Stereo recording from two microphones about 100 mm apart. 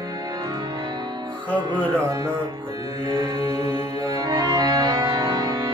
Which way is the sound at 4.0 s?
45° right (ahead or behind).